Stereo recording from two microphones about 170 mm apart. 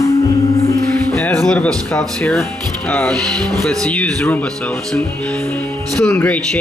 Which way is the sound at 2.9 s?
10° left (ahead or behind).